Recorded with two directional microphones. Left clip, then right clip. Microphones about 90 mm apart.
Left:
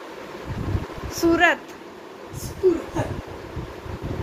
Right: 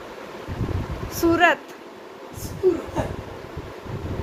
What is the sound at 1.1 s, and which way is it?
Speech, 65° right (ahead or behind).